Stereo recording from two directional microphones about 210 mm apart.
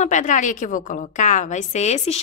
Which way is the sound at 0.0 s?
35° left (ahead or behind).